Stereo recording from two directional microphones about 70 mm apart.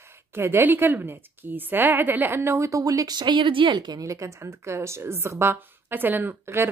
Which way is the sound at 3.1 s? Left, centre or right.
Right.